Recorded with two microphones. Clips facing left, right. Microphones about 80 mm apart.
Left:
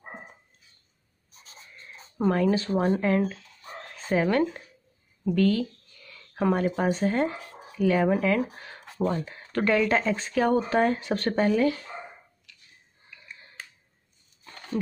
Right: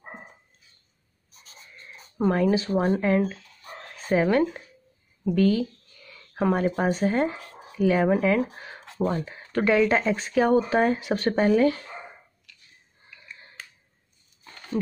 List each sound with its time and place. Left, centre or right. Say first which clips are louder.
2.1 s speech: right 1 dB; centre
5.2 s a sound: right 2 dB; centre
6.9 s speech: right 1 dB; centre
8.5 s a sound: right 2 dB; centre
9.0 s speech: right 1 dB; centre
11.4 s speech: right 4 dB; right